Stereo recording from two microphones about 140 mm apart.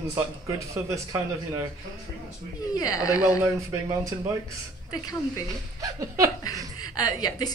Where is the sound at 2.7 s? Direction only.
25° left (ahead or behind).